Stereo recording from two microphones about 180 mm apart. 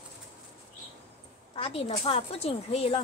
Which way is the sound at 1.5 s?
30° left (ahead or behind).